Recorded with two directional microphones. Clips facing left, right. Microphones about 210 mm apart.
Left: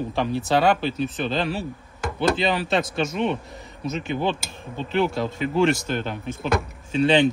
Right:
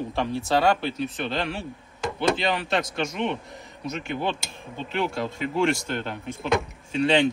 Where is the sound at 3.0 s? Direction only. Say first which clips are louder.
Left 3 dB; 5° left (ahead or behind).